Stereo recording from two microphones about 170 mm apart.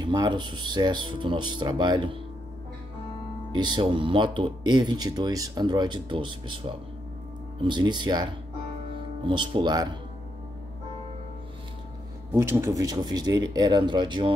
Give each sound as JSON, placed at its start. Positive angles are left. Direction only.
{"t": 0.0, "sound": "speech", "side_deg": -25}
{"t": 3.5, "sound": "speech", "side_deg": -25}
{"t": 12.3, "sound": "speech", "side_deg": -15}